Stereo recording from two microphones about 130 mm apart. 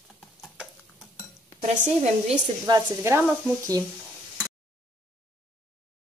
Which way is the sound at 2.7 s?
35° right (ahead or behind).